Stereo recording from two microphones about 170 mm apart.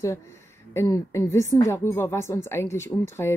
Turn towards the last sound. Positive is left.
turn(degrees=15)  # may be behind; listen again after turning